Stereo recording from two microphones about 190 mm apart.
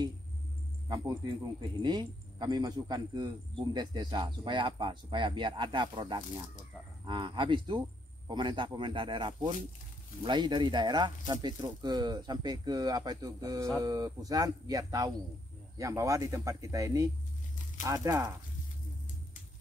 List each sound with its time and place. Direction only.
0.8 s a man's voice: 20° right (ahead or behind)